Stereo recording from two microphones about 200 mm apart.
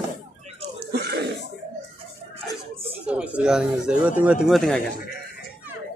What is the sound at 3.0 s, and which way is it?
A man's voice, 5° right (ahead or behind).